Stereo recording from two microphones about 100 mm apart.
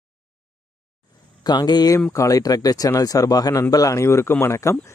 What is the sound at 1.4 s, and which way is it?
Speech, 45° left (ahead or behind).